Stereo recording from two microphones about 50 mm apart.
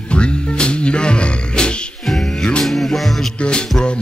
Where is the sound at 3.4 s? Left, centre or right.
Centre.